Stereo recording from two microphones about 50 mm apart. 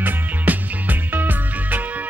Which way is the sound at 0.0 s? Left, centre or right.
Right.